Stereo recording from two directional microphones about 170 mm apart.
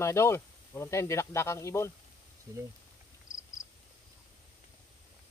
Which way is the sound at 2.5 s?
20° right (ahead or behind).